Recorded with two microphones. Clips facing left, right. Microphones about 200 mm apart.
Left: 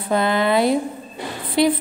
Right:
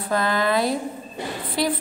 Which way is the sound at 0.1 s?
25° left (ahead or behind).